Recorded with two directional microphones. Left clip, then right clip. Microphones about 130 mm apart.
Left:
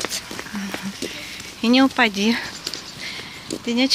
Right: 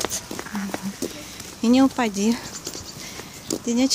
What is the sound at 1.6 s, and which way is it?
Speech, 10° right (ahead or behind).